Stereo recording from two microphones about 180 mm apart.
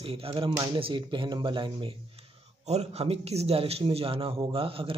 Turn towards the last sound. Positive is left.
turn(degrees=-30)  # may be behind; listen again after turning